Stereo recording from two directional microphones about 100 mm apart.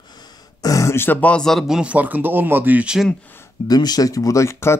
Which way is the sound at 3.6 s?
40° left (ahead or behind).